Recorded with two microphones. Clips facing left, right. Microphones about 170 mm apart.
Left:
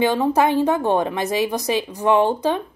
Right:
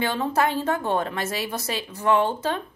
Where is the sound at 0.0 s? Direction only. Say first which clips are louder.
Left 6 dB; 15° left (ahead or behind).